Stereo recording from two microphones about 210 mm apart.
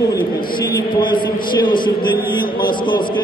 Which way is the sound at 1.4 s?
40° left (ahead or behind).